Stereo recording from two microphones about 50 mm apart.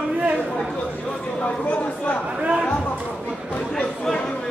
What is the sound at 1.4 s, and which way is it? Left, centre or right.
Chatter, left.